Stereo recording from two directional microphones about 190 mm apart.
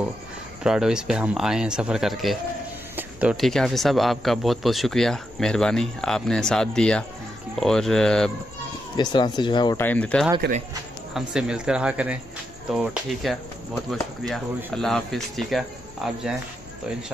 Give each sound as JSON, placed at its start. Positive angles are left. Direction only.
{"t": 0.7, "sound": "speech", "side_deg": -5}
{"t": 8.9, "sound": "speech", "side_deg": 25}
{"t": 9.8, "sound": "speech", "side_deg": 10}
{"t": 10.4, "sound": "speech", "side_deg": -65}
{"t": 11.1, "sound": "speech", "side_deg": -5}